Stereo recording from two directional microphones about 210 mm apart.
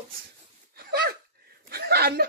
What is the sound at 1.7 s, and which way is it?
Speech, 50° right (ahead or behind).